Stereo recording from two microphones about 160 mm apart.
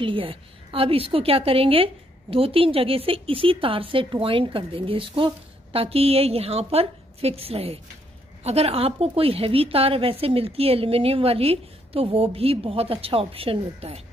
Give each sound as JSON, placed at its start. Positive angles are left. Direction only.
{"t": 0.0, "sound": "a woman's voice", "side_deg": -35}